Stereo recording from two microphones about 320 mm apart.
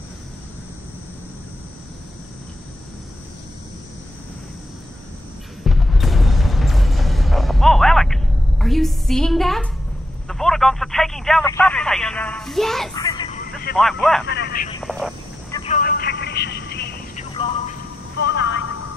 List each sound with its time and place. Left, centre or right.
5.6 s music: centre
10.2 s speech: centre
12.9 s vehicle: centre
13.7 s speech: centre
14.3 s speech: left
14.8 s speech: centre
15.5 s a sound: centre
18.2 s a sound: left